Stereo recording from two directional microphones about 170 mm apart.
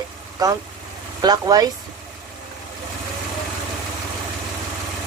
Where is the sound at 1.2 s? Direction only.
25° right (ahead or behind).